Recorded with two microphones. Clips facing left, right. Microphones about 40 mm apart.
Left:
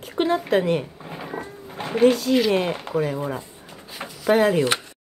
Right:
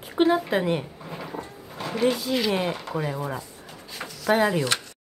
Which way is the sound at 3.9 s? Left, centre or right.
Centre.